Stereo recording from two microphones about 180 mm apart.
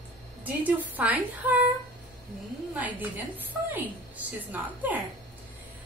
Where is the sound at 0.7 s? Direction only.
10° right (ahead or behind).